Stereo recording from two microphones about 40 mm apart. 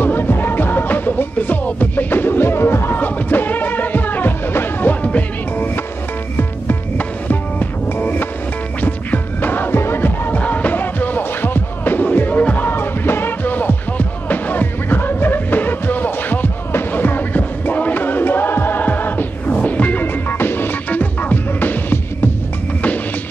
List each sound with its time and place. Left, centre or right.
0.0 s music: left
3.0 s music: left
7.0 s music: left
9.8 s music: left
10.3 s music: left
10.8 s music: left
12.5 s music: left
13.4 s music: left
17.4 s music: left
19.5 s music: left
20.9 s music: left